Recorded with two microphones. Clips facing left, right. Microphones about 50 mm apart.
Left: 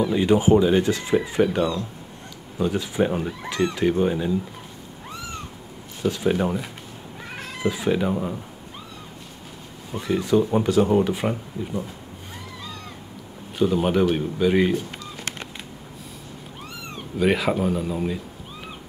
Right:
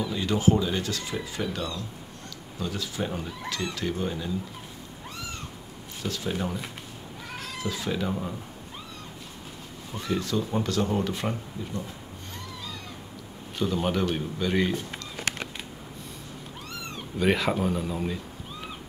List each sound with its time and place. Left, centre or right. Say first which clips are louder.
0.0 s speech: left 6 dB; left
6.0 s speech: left 9 dB; left
9.9 s speech: left 8 dB; centre
13.6 s speech: left 7 dB; centre
16.9 s speech: left 4 dB; centre